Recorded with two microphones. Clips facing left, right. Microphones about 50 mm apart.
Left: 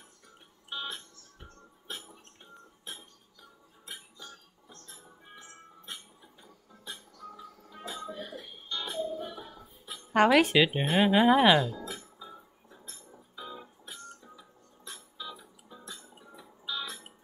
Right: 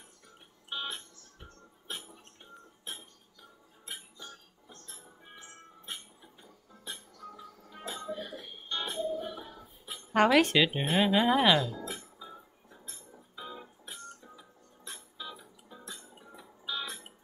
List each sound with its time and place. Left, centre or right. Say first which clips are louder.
0.7 s music: even; centre
2.8 s chink: right 1 dB; centre
3.8 s music: right 1 dB; centre; by 8.9 s right
10.1 s speech: left 2 dB; centre
11.7 s music: even; centre
16.2 s a sound: even; centre